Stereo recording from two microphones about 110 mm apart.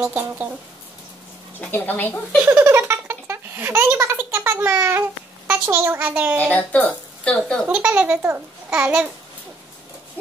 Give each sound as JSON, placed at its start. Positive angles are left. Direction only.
{"t": 0.0, "sound": "speech", "side_deg": -15}
{"t": 1.6, "sound": "a woman's voice", "side_deg": 15}
{"t": 2.4, "sound": "baby laughter", "side_deg": -20}
{"t": 5.7, "sound": "speech", "side_deg": -20}
{"t": 6.4, "sound": "a woman's voice", "side_deg": 15}
{"t": 7.6, "sound": "a child's voice", "side_deg": -10}